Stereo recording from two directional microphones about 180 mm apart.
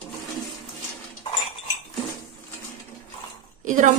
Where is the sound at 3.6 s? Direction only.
45° right (ahead or behind).